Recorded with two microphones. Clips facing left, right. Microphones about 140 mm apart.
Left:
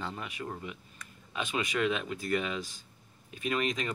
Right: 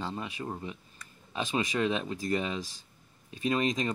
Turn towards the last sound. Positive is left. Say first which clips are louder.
# right 3 dB
turn(degrees=-30)  # may be behind; listen again after turning